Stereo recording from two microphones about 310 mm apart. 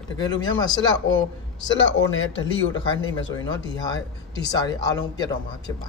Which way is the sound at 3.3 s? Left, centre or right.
Centre.